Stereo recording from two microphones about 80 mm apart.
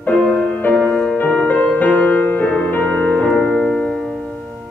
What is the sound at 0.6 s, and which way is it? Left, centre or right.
Music, left.